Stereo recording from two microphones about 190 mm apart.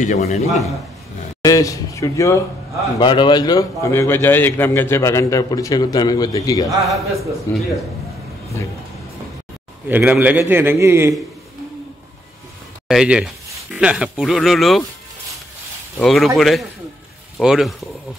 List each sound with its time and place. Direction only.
0.0 s a man's voice: 35° left (ahead or behind)
1.4 s a man's voice: 15° left (ahead or behind)
6.9 s a man's voice: centre (ahead or behind)
9.8 s a man's voice: 10° right (ahead or behind)
12.8 s a man's voice: 5° right (ahead or behind)
16.0 s a man's voice: centre (ahead or behind)